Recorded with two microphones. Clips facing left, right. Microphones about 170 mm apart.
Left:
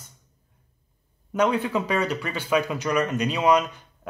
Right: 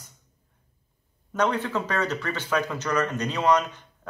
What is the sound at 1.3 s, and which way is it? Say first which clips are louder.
Speech: left 3 dB; 10° left (ahead or behind).